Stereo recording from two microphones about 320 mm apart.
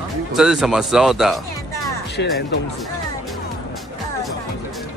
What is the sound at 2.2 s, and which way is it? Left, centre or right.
Speech, left.